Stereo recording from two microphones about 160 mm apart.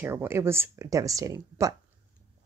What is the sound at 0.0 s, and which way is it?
Speech, 15° right (ahead or behind).